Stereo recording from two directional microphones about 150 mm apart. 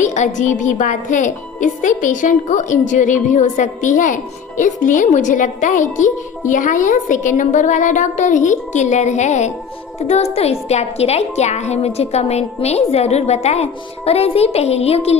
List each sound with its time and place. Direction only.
0.0 s a woman's voice: 55° left (ahead or behind)